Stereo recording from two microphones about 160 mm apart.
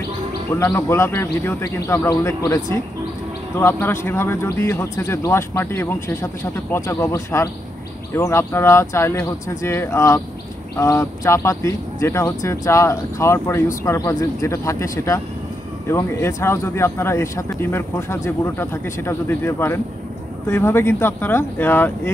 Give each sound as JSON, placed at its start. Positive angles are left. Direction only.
{"t": 0.7, "sound": "speech", "side_deg": 15}